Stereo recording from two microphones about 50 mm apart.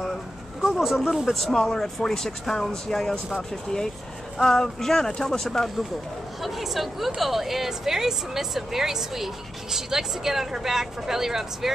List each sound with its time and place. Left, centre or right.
0.6 s speech: centre
4.4 s speech: centre
6.4 s speech: centre